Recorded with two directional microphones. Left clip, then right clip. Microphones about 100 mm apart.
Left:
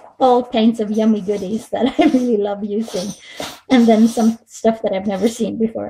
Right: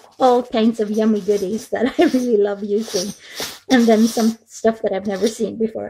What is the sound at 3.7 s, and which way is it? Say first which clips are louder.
A woman's voice: left 1 dB; 25° right (ahead or behind).